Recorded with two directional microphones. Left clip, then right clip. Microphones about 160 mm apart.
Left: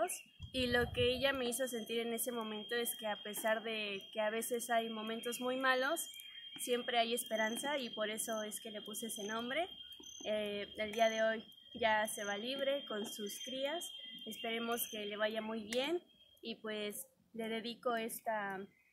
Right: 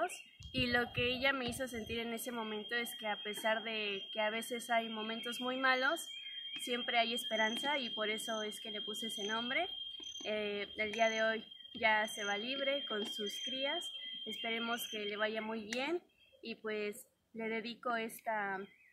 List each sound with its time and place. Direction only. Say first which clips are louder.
0.7 s a woman's voice: left 1 dB; 15° left (ahead or behind)
13.6 s smoke detector: left 1 dB; 10° left (ahead or behind)
14.4 s a woman's voice: even; 10° left (ahead or behind)